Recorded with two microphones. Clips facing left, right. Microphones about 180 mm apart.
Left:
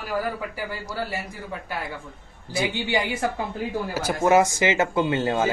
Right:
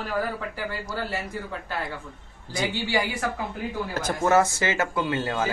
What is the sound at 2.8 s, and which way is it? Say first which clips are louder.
Speech: left 2 dB; 20° left (ahead or behind).